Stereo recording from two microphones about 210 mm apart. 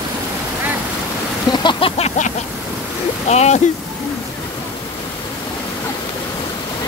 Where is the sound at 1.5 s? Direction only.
20° left (ahead or behind).